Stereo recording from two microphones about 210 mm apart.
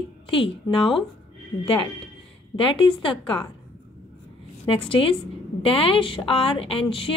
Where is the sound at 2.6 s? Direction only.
25° left (ahead or behind).